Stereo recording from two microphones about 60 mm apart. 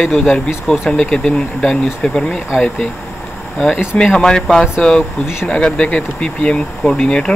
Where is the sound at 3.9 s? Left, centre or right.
Centre.